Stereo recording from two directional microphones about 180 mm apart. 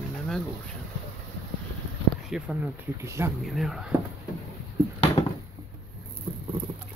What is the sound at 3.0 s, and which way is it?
Speech, 15° right (ahead or behind).